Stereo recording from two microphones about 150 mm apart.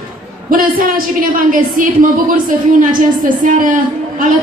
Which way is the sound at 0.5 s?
70° right (ahead or behind).